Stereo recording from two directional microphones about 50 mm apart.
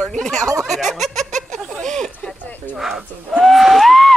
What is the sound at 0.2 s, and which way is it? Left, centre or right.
Speech, centre.